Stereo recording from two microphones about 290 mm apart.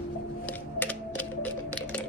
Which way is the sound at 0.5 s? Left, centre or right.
Centre.